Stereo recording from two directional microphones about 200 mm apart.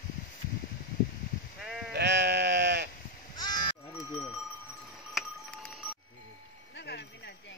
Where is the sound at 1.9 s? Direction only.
55° right (ahead or behind).